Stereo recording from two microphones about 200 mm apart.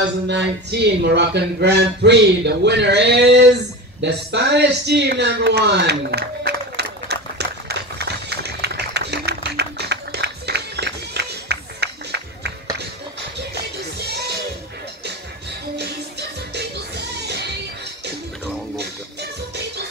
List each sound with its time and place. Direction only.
0.3 s speech: 55° right (ahead or behind)
4.0 s a sound: 60° right (ahead or behind)
14.0 s music: 55° right (ahead or behind)
15.7 s music: 55° right (ahead or behind)